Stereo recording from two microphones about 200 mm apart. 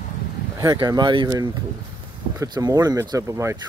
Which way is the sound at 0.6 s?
20° right (ahead or behind).